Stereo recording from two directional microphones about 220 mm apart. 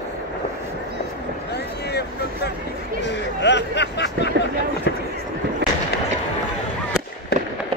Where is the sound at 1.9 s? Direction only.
45° left (ahead or behind).